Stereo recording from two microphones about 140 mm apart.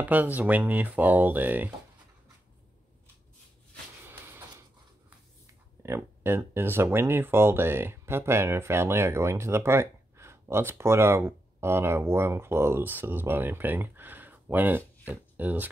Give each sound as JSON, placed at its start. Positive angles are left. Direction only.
{"t": 0.0, "sound": "speech", "side_deg": -10}
{"t": 4.1, "sound": "a sound", "side_deg": -15}
{"t": 5.8, "sound": "speech", "side_deg": -20}